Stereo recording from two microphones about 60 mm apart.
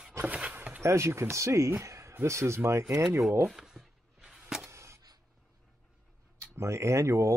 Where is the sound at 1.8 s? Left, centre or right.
Right.